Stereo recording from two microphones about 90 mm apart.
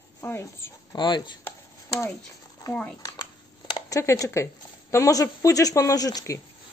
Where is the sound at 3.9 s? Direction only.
35° left (ahead or behind).